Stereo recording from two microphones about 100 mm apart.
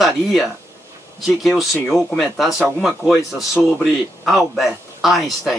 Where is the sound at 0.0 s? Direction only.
Centre (ahead or behind).